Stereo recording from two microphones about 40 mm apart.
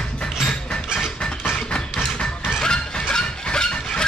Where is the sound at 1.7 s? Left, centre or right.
Centre.